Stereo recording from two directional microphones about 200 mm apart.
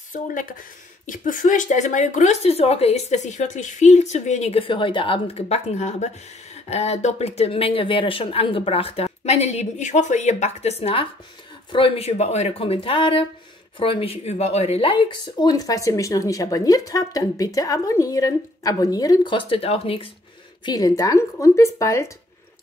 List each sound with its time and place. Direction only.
0.1 s a woman's voice: 40° left (ahead or behind)
20.6 s a woman's voice: 20° left (ahead or behind)